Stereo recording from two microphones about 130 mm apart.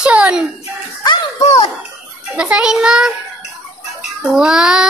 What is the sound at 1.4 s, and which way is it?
Speech, 55° left (ahead or behind).